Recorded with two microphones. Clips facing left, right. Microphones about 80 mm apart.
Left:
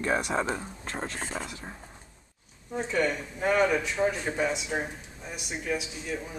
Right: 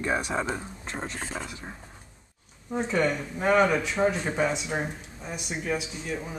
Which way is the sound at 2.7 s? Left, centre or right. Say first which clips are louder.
Right 2 dB; centre.